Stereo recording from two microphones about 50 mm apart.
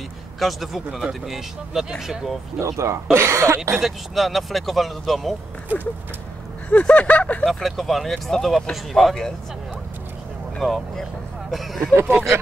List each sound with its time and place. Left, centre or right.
0.4 s speech: centre
2.6 s speech: right
3.7 s speech: centre
6.7 s a sound: left
7.4 s speech: centre
10.6 s speech: centre
11.9 s speech: right